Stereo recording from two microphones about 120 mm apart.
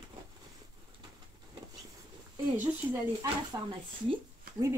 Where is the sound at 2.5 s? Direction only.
15° right (ahead or behind).